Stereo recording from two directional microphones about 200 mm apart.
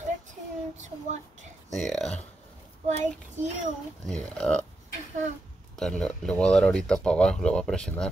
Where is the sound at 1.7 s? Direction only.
Centre (ahead or behind).